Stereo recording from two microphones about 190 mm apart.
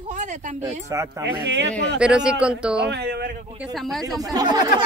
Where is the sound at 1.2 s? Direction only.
70° right (ahead or behind).